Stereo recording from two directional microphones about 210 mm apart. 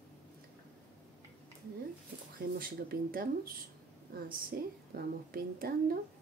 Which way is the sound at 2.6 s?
45° right (ahead or behind).